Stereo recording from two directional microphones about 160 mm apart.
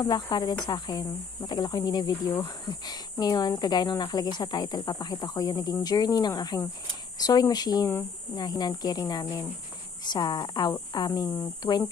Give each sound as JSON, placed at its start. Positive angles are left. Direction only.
{"t": 0.0, "sound": "speech", "side_deg": 25}